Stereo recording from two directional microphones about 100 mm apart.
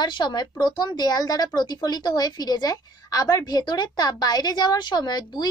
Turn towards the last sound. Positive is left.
turn(degrees=45)  # may be behind; listen again after turning